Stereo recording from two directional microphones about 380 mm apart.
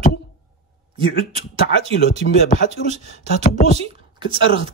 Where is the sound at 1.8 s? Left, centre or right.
Centre.